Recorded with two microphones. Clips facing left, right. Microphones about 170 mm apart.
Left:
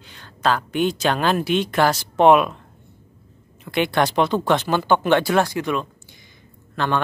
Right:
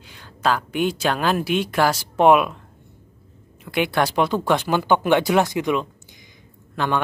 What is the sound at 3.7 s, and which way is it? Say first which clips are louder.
Speech: left 1 dB; 10° right (ahead or behind).